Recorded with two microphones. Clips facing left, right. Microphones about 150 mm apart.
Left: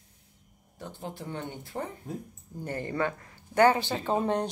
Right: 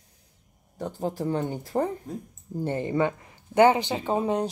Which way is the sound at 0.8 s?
40° right (ahead or behind).